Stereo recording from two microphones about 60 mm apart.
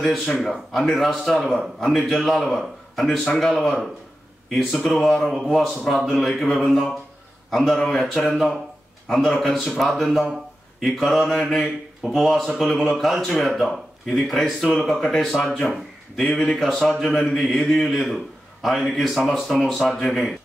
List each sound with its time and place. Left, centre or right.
0.0 s speech: centre
7.7 s speech: centre
8.0 s a man's voice: centre
20.0 s speech: centre